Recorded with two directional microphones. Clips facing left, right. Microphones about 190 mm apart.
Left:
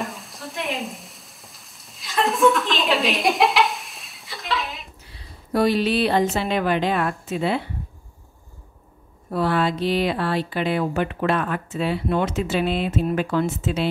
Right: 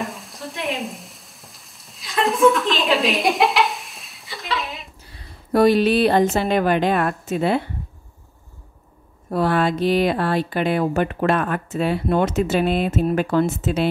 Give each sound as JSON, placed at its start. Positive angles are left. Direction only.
{"t": 0.0, "sound": "sizzle", "side_deg": 0}
{"t": 5.5, "sound": "speech", "side_deg": -50}
{"t": 9.3, "sound": "speech", "side_deg": -50}